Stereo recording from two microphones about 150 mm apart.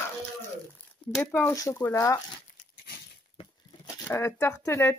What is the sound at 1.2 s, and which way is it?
Speech, 15° left (ahead or behind).